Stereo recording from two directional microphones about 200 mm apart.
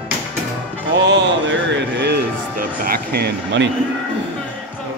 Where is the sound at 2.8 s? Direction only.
50° right (ahead or behind).